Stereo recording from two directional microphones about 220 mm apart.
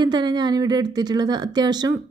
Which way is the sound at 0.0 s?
20° right (ahead or behind).